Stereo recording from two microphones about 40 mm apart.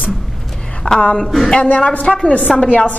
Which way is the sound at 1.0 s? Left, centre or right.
Left.